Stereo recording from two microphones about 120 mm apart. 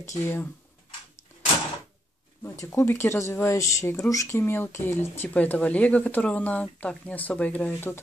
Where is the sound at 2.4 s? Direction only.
25° left (ahead or behind).